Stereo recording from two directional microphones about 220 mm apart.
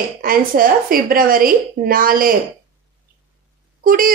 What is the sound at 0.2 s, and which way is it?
A woman's voice, 40° right (ahead or behind).